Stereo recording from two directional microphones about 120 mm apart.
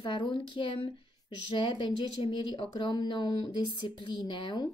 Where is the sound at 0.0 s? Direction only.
40° left (ahead or behind).